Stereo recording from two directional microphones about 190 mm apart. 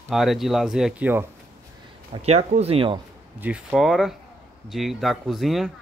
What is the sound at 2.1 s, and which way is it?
Speech, 35° right (ahead or behind).